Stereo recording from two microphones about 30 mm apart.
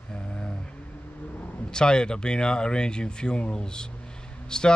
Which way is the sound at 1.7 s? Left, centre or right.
Left.